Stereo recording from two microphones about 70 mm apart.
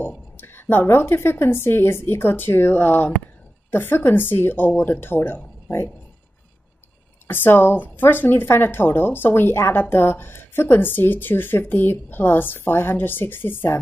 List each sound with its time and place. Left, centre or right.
0.4 s speech: left
7.2 s speech: left